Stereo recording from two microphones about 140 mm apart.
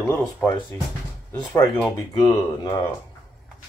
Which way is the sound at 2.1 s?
35° left (ahead or behind).